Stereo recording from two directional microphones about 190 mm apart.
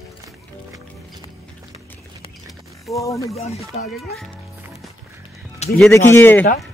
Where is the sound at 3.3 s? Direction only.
35° left (ahead or behind).